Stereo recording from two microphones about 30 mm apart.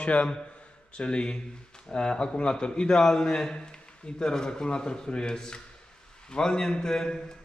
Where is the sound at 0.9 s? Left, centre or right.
Left.